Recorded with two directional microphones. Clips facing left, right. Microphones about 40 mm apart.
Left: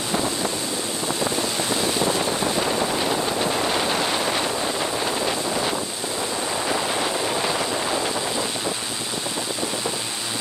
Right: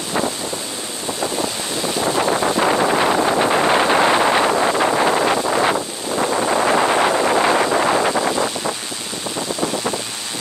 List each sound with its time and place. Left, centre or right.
2.6 s vehicle: right
4.5 s wind noise: right
6.6 s vehicle: right